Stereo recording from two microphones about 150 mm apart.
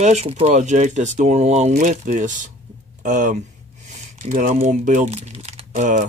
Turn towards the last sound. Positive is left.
turn(degrees=-55)  # may be behind; listen again after turning